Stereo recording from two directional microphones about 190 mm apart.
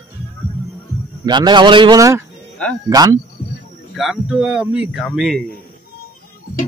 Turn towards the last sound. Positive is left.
turn(degrees=0)  # may be behind; listen again after turning